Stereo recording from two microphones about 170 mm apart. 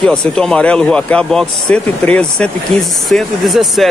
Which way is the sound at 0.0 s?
5° left (ahead or behind).